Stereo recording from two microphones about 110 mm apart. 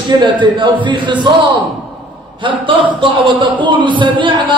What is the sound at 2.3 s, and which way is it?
A man's voice, 50° right (ahead or behind).